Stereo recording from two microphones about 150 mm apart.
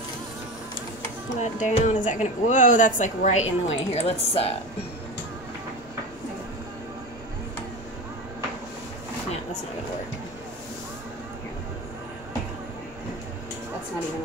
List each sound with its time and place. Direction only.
1.4 s speech: 55° left (ahead or behind)